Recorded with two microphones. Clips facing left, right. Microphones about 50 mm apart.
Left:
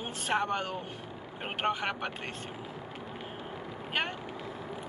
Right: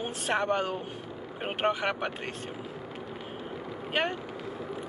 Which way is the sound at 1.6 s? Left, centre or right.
Centre.